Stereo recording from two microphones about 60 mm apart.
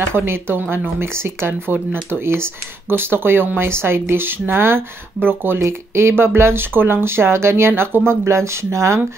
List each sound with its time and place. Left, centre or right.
0.1 s speech: right
5.6 s speech: right